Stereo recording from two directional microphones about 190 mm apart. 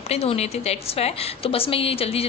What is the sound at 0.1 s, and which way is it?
A woman's voice, 30° left (ahead or behind).